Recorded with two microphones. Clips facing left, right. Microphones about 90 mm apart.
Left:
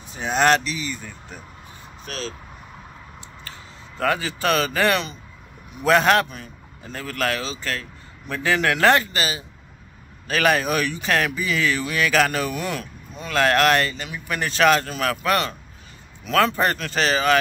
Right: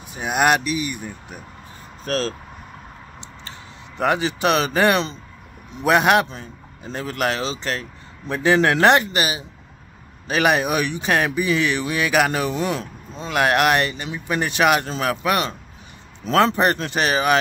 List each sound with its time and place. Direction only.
0.1 s speech: 10° right (ahead or behind)
2.0 s speech: 40° right (ahead or behind)
4.0 s speech: 20° right (ahead or behind)
6.2 s speech: 30° right (ahead or behind)
13.4 s speech: 15° right (ahead or behind)